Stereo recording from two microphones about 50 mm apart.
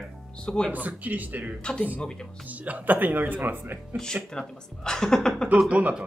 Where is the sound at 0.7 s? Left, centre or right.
Right.